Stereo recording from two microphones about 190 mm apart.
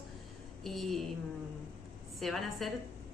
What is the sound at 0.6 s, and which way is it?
Speech, centre (ahead or behind).